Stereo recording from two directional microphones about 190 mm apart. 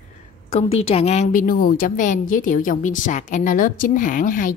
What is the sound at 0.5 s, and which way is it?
A woman's voice, 30° left (ahead or behind).